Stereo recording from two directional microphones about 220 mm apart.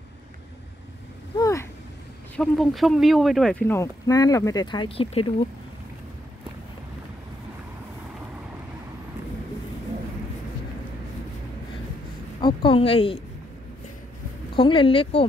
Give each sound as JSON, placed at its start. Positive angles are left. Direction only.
{"t": 1.4, "sound": "vehicle", "side_deg": 15}
{"t": 2.3, "sound": "speech", "side_deg": 5}
{"t": 12.4, "sound": "speech", "side_deg": 20}
{"t": 14.5, "sound": "speech", "side_deg": 25}